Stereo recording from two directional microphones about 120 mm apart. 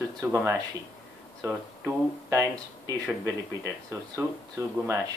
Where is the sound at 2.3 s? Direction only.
25° right (ahead or behind).